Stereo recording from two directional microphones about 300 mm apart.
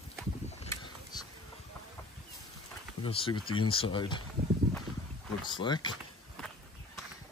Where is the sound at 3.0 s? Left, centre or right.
Centre.